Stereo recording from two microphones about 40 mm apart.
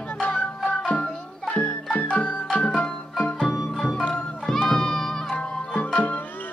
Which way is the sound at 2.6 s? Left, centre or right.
Left.